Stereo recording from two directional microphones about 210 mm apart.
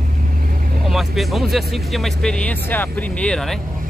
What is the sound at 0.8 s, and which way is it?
Speech, centre (ahead or behind).